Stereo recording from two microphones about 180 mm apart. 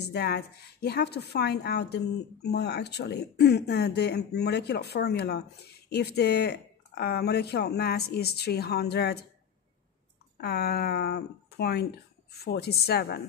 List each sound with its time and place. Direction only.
0.0 s a woman's voice: 65° left (ahead or behind)
10.3 s a woman's voice: 60° left (ahead or behind)